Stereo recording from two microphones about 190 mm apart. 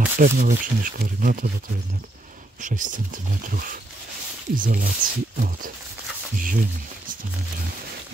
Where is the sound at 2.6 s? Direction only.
45° right (ahead or behind).